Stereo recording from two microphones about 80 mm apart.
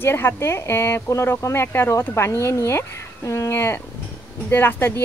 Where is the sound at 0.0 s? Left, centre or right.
Left.